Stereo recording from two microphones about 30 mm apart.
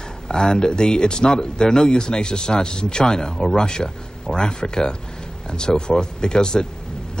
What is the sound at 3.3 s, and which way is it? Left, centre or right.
Speech, centre.